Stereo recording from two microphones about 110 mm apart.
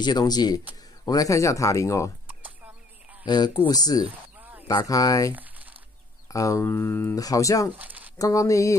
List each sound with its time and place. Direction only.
0.0 s speech: 40° left (ahead or behind)
2.2 s chicken: 15° right (ahead or behind)
3.3 s speech: 40° left (ahead or behind)
4.4 s a sound: 15° right (ahead or behind)
4.6 s speech: 35° left (ahead or behind)
5.3 s crumpling: 15° right (ahead or behind)
6.2 s speech: 30° left (ahead or behind)
7.2 s speech: 30° left (ahead or behind)
7.7 s speech: 15° right (ahead or behind)
8.2 s speech: 30° left (ahead or behind)